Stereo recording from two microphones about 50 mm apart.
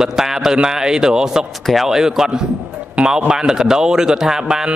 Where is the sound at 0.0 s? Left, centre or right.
Centre.